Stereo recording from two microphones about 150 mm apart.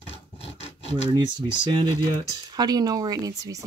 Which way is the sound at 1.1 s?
30° right (ahead or behind).